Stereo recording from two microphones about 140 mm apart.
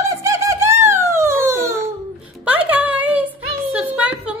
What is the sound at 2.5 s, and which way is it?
Music, 10° right (ahead or behind).